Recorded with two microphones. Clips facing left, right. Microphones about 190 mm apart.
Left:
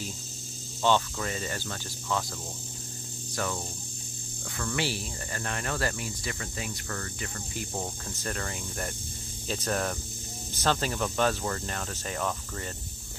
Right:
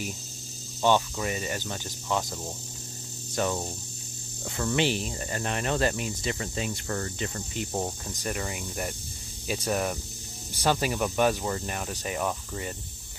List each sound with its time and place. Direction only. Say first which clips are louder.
0.8 s cricket: right 2 dB; 15° right (ahead or behind)
3.3 s speech: right 5 dB; 20° right (ahead or behind)
7.8 s cricket: right 3 dB; 15° right (ahead or behind)